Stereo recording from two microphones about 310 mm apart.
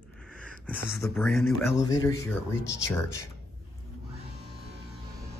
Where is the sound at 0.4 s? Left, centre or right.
Centre.